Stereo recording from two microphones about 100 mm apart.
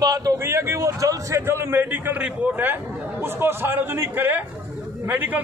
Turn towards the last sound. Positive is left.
turn(degrees=-20)  # may be behind; listen again after turning